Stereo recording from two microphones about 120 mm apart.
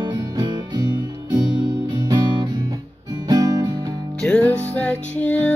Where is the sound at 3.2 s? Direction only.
30° right (ahead or behind).